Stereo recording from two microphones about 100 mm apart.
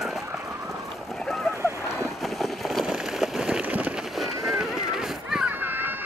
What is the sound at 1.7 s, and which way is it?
Boat, 30° left (ahead or behind).